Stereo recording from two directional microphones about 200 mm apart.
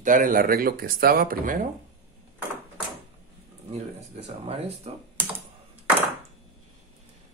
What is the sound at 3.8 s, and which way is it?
Speech, 30° right (ahead or behind).